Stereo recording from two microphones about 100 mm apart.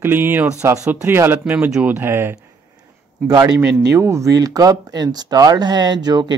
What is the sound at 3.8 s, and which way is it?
Speech, 30° right (ahead or behind).